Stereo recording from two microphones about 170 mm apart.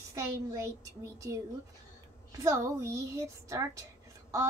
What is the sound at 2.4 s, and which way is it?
Speech, 20° right (ahead or behind).